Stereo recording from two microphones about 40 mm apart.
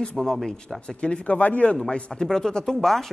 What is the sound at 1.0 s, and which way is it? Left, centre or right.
Speech, left.